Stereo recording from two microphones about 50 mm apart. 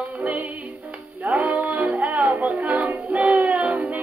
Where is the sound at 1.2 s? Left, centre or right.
Right.